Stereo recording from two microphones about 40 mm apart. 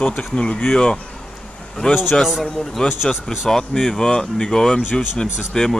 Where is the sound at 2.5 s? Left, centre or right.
Centre.